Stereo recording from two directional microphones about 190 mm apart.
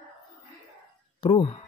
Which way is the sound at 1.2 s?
30° left (ahead or behind).